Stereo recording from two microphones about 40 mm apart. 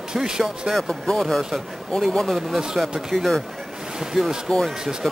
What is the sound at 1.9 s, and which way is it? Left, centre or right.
Speech, centre.